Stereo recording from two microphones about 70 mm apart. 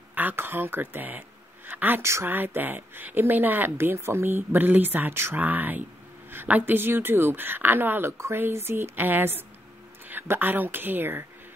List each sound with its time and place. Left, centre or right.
0.1 s speech: right